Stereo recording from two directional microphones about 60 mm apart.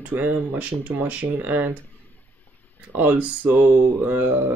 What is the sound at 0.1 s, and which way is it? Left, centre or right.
Speech, right.